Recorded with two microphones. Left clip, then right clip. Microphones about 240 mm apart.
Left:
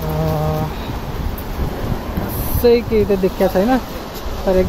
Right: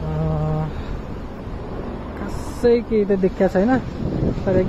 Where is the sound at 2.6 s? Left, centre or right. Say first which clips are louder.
Left 4 dB; centre.